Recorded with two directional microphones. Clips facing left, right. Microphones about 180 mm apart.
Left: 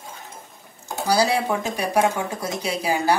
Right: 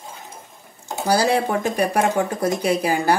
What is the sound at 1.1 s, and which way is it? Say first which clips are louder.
Speech: right 2 dB; 55° right (ahead or behind).